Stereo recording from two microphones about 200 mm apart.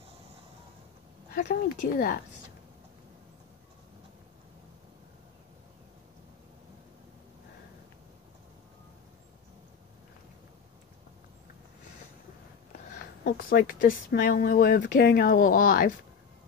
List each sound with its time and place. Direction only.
1.3 s speech: 45° left (ahead or behind)
13.2 s speech: 45° left (ahead or behind)